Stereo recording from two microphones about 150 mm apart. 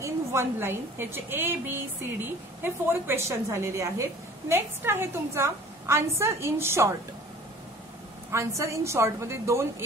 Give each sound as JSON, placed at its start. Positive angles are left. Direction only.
{"t": 0.0, "sound": "a woman's voice", "side_deg": -20}
{"t": 8.3, "sound": "a woman's voice", "side_deg": -20}